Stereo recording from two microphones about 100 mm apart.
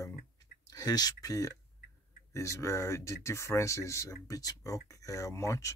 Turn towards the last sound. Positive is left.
turn(degrees=30)  # may be behind; listen again after turning